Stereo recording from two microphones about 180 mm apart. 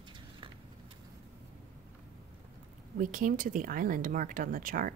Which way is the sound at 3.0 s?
50° right (ahead or behind).